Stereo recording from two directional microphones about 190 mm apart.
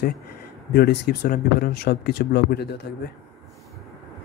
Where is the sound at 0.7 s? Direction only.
60° left (ahead or behind).